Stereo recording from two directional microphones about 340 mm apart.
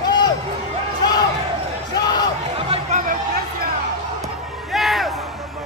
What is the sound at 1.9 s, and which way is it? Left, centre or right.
Basketball bounce, centre.